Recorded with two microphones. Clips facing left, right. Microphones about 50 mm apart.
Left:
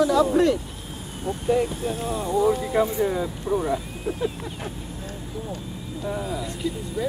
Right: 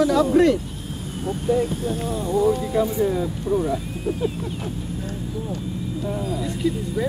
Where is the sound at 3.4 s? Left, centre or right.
Centre.